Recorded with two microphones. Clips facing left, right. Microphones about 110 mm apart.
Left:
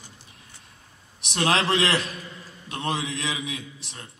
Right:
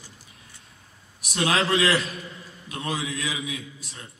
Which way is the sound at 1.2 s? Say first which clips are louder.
Left 1 dB; 30° left (ahead or behind).